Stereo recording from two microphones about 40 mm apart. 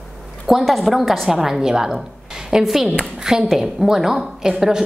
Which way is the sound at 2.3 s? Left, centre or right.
Centre.